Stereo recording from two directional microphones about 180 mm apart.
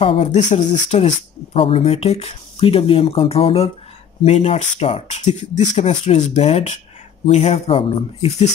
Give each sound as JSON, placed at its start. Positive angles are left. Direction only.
{"t": 0.0, "sound": "speech", "side_deg": 30}